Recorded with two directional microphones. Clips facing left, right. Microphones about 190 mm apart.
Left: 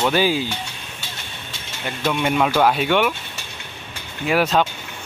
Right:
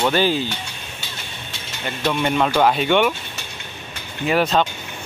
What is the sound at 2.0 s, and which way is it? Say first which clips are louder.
Speech: even; 5° left (ahead or behind).